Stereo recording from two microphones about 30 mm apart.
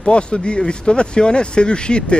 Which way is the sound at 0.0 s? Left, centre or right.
Left.